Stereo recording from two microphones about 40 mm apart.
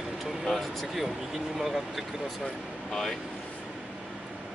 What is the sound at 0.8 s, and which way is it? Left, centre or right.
Speech, centre.